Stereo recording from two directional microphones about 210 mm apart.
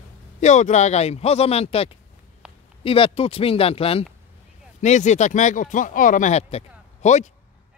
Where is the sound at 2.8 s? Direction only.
25° left (ahead or behind).